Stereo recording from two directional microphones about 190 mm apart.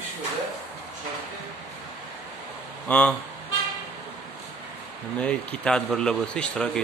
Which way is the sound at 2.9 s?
5° left (ahead or behind).